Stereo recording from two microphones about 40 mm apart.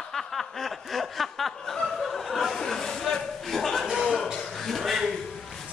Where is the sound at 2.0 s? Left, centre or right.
Centre.